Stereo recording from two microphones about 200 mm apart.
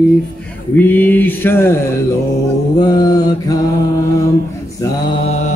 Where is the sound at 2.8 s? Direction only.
20° left (ahead or behind).